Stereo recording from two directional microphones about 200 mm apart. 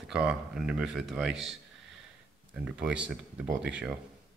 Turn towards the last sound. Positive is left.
turn(degrees=-5)  # may be behind; listen again after turning